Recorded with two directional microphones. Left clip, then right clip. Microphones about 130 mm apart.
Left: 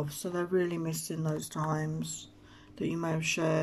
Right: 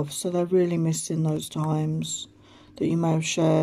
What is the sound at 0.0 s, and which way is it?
Speech, 45° right (ahead or behind).